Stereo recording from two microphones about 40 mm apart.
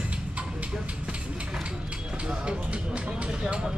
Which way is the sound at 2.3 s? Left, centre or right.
Right.